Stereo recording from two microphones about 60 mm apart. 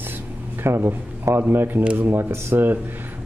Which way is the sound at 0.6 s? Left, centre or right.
Right.